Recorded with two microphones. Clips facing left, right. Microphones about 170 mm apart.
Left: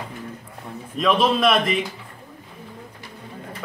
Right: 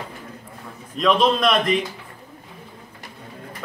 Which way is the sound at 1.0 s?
5° left (ahead or behind).